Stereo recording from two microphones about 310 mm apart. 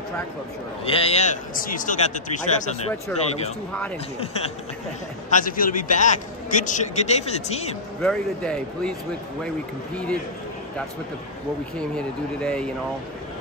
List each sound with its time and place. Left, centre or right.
0.8 s a man's voice: centre
3.1 s speech: centre
5.3 s a man's voice: left
8.0 s speech: centre
12.4 s speech: centre